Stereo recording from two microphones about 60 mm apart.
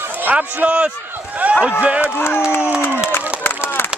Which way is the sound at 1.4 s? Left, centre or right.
Right.